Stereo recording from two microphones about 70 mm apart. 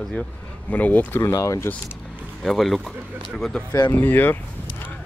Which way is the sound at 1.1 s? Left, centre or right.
Left.